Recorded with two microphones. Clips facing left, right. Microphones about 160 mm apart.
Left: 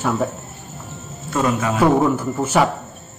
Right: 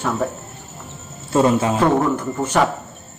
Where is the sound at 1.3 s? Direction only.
30° right (ahead or behind).